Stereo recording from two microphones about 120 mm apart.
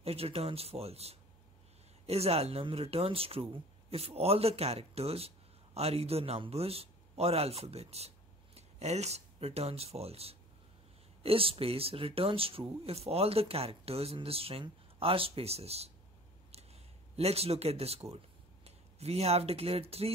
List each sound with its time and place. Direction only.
0.0 s speech: 55° right (ahead or behind)